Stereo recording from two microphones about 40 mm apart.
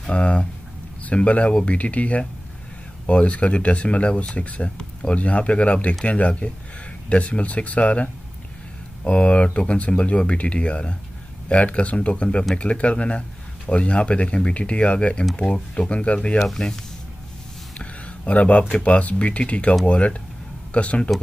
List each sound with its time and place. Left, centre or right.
0.1 s speech: left
16.3 s speech: centre
17.7 s speech: left